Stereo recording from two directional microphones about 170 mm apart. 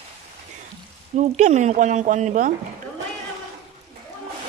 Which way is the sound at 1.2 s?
45° right (ahead or behind).